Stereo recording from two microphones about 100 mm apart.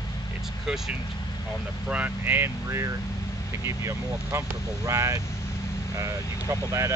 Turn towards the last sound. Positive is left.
turn(degrees=-30)  # may be behind; listen again after turning